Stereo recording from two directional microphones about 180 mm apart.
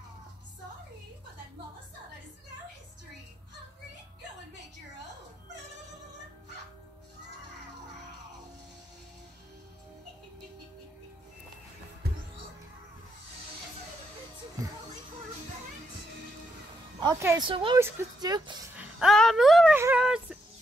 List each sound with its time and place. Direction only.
12.0 s music: 60° right (ahead or behind)
17.0 s speech: 15° right (ahead or behind)
17.4 s speech: 30° right (ahead or behind)
17.7 s speech: 15° right (ahead or behind)
18.8 s a sound: centre (ahead or behind)